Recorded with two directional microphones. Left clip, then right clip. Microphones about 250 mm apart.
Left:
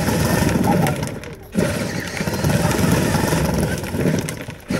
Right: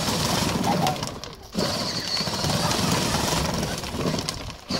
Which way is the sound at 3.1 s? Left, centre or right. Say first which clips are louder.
Left 4 dB; right.